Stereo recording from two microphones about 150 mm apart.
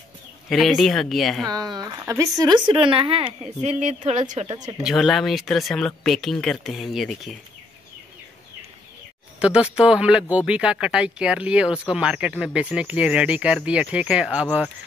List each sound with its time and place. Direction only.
0.5 s speech: centre (ahead or behind)
1.5 s speech: 25° right (ahead or behind)
3.6 s a woman's voice: 50° right (ahead or behind)
4.8 s speech: centre (ahead or behind)
9.4 s speech: 5° right (ahead or behind)